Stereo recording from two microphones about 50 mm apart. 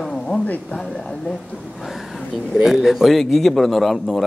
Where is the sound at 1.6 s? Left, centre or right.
Centre.